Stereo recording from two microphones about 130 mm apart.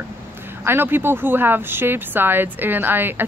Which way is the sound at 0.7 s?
15° right (ahead or behind).